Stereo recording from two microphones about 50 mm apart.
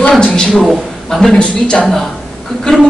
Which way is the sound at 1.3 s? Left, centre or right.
Centre.